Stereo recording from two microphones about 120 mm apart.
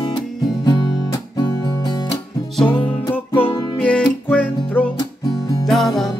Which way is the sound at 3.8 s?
10° left (ahead or behind).